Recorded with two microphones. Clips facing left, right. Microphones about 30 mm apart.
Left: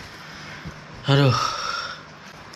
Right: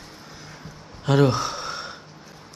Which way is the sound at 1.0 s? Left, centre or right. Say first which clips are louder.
Even; left.